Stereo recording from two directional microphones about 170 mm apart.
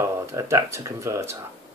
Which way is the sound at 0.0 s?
15° right (ahead or behind).